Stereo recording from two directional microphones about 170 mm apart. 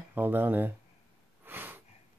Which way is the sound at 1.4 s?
10° right (ahead or behind).